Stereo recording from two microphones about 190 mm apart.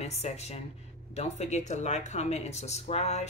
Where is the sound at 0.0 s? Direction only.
35° left (ahead or behind).